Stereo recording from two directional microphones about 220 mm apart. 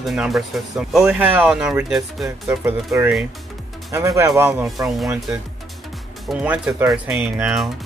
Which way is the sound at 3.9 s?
15° right (ahead or behind).